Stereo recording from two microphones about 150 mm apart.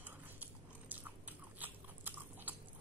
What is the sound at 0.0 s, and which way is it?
Dog, 10° right (ahead or behind).